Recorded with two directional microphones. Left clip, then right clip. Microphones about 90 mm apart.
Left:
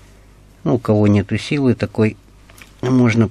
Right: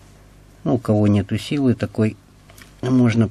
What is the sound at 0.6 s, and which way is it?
Speech, 20° left (ahead or behind).